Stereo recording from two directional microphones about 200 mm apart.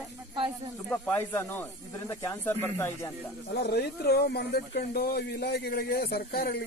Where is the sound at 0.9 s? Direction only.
10° left (ahead or behind).